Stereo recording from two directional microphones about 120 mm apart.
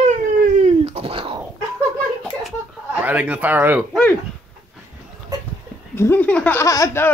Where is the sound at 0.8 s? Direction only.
55° right (ahead or behind).